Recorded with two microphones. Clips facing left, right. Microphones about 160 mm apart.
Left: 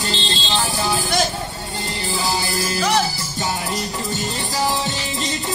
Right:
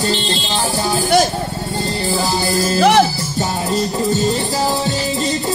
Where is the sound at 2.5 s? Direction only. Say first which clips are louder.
Right 7 dB; 40° right (ahead or behind).